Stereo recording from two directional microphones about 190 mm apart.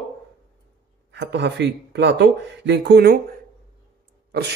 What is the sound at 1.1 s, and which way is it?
Speech, 65° right (ahead or behind).